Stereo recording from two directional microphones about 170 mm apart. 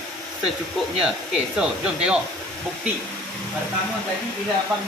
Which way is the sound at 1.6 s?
5° right (ahead or behind).